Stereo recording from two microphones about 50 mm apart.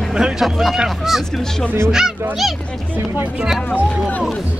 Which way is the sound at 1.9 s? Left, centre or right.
Centre.